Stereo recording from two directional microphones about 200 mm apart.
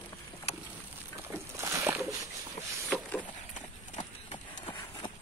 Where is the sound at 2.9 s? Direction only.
5° left (ahead or behind).